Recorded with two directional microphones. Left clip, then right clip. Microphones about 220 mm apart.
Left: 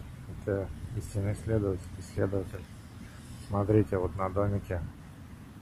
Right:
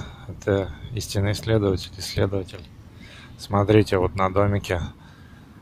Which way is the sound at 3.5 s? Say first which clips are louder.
Right 9 dB; 30° right (ahead or behind).